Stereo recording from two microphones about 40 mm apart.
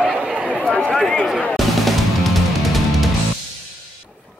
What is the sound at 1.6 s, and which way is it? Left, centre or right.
Music, centre.